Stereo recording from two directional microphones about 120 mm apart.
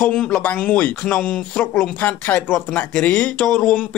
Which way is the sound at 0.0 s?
10° left (ahead or behind).